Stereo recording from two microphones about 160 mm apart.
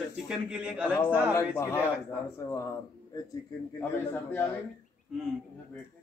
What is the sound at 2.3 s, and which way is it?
Speech, 15° left (ahead or behind).